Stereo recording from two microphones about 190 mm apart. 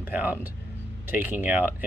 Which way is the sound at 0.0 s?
10° right (ahead or behind).